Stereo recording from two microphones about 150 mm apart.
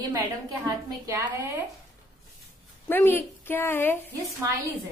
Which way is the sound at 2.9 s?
15° left (ahead or behind).